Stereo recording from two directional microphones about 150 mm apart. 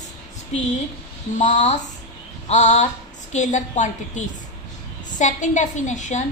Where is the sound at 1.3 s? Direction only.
55° left (ahead or behind).